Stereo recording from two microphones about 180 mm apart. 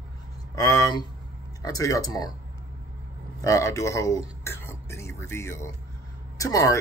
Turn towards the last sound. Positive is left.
turn(degrees=20)  # may be behind; listen again after turning